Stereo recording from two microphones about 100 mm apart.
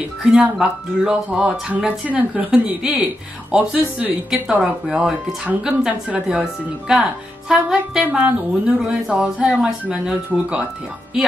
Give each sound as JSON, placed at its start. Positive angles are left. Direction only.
{"t": 0.2, "sound": "speech", "side_deg": -10}
{"t": 4.3, "sound": "speech", "side_deg": -5}